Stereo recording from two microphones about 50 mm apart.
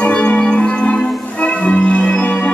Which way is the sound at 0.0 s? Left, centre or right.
Left.